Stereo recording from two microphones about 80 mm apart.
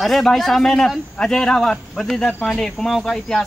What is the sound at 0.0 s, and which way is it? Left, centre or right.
Speech, centre.